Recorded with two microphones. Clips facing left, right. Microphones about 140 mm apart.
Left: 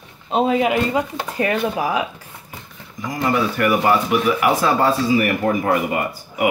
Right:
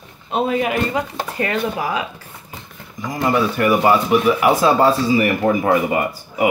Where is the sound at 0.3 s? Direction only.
20° left (ahead or behind).